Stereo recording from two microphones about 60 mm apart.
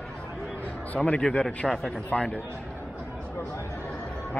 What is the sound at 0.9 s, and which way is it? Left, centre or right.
Speech, left.